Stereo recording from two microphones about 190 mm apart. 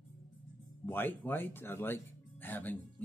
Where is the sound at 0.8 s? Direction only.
10° left (ahead or behind).